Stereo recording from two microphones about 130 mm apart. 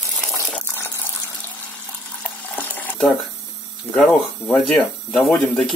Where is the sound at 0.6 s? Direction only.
20° left (ahead or behind).